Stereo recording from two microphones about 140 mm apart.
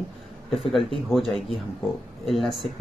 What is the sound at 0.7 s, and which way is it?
Speech, centre (ahead or behind).